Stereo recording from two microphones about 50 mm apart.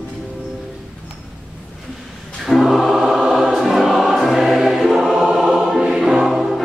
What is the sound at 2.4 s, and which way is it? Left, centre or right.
Choir, centre.